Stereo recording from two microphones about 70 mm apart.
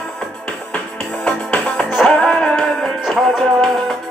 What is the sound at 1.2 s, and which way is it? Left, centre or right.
Music, centre.